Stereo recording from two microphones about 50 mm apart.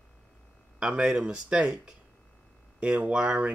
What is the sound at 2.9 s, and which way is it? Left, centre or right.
Speech, right.